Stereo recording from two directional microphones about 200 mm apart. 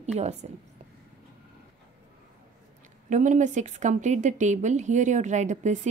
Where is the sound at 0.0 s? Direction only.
35° right (ahead or behind).